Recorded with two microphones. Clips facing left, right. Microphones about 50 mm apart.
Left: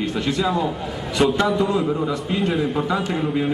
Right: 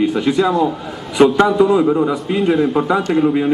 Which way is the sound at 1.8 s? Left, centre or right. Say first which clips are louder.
Right 7 dB; right.